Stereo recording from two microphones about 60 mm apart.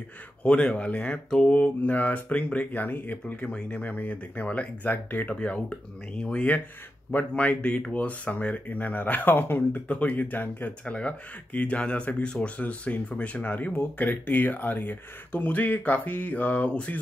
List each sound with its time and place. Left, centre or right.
0.4 s speech: centre; by 9.6 s left
9.7 s speech: left